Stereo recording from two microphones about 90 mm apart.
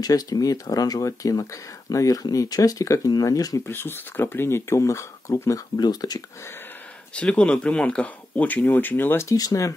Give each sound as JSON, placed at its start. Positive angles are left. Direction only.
{"t": 0.0, "sound": "speech", "side_deg": 45}
{"t": 3.6, "sound": "speech", "side_deg": 25}
{"t": 5.8, "sound": "speech", "side_deg": 45}
{"t": 7.2, "sound": "speech", "side_deg": 10}
{"t": 9.3, "sound": "speech", "side_deg": 40}